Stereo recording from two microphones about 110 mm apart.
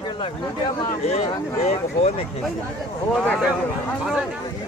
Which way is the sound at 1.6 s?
75° left (ahead or behind).